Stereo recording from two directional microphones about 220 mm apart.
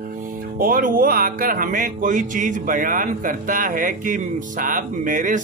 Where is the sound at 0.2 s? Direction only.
40° right (ahead or behind).